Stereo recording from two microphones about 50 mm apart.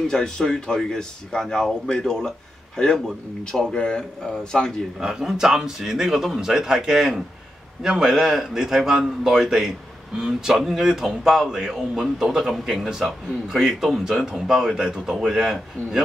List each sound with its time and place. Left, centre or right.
0.1 s speech: centre
5.0 s speech: centre